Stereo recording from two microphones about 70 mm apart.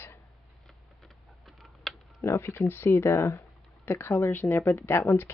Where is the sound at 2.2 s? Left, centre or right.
Left.